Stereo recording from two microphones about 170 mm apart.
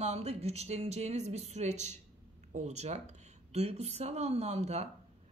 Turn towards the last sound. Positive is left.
turn(degrees=-40)  # may be behind; listen again after turning